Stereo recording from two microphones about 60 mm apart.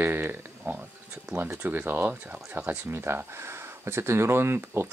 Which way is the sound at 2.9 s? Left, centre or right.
Right.